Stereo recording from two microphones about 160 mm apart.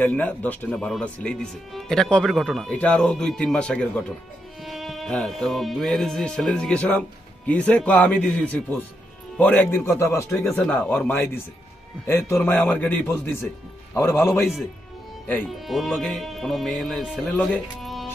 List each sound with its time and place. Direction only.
0.0 s speech: 10° left (ahead or behind)
10.4 s speech: 5° left (ahead or behind)
15.6 s speech: centre (ahead or behind)